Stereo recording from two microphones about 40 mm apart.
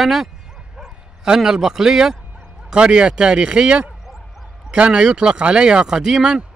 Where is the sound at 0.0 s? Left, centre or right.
Centre.